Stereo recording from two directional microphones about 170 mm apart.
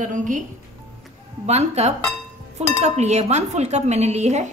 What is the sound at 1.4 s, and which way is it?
A woman's voice, 40° right (ahead or behind).